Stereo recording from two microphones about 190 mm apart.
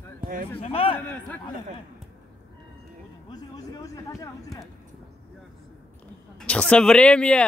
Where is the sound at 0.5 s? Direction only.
30° left (ahead or behind).